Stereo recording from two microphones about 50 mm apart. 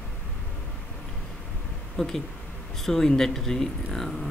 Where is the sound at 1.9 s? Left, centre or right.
Centre.